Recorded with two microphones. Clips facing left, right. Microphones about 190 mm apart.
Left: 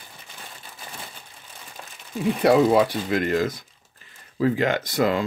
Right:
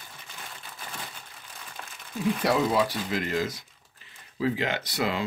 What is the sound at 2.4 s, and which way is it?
Speech, 55° left (ahead or behind).